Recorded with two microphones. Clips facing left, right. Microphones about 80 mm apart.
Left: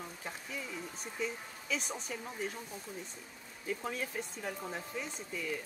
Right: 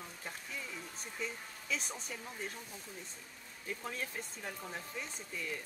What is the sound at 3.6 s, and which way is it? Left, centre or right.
Speech, centre.